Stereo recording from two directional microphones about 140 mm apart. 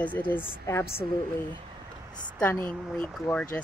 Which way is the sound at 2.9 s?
10° left (ahead or behind).